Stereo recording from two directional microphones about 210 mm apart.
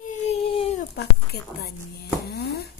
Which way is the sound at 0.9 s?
50° left (ahead or behind).